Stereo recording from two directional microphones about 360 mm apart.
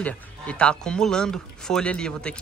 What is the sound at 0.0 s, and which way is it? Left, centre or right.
Speech, centre.